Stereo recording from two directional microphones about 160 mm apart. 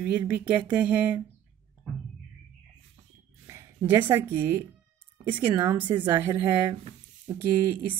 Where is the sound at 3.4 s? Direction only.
15° right (ahead or behind).